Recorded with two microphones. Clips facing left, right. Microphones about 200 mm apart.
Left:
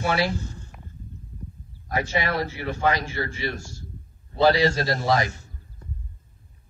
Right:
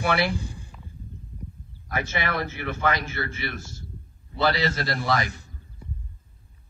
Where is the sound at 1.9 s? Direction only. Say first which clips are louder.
Left 3 dB; 35° left (ahead or behind).